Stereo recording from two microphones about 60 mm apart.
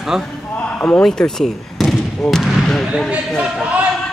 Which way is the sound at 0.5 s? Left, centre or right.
Left.